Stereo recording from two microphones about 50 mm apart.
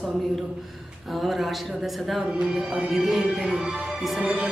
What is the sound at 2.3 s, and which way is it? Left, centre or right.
Music, centre.